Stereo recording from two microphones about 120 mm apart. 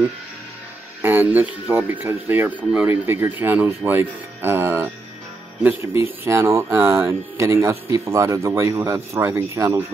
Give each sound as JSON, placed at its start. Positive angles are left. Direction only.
{"t": 1.0, "sound": "speech", "side_deg": -15}